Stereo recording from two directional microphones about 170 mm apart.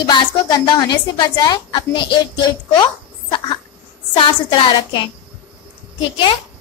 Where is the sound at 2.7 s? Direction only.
25° left (ahead or behind).